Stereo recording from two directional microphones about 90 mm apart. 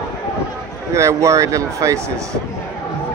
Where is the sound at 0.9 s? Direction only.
35° right (ahead or behind).